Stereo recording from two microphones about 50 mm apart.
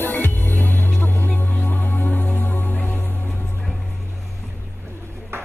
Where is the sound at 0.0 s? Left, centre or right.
Left.